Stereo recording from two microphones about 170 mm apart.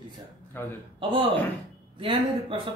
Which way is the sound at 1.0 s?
30° right (ahead or behind).